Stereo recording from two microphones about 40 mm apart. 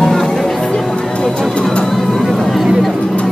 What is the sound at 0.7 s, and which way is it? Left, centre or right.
Music, left.